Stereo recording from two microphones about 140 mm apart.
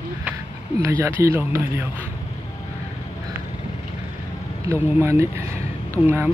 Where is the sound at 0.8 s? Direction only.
20° right (ahead or behind).